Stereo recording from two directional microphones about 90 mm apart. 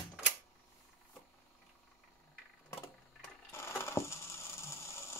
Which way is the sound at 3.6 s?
30° left (ahead or behind).